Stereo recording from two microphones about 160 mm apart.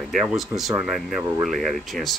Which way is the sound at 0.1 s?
5° right (ahead or behind).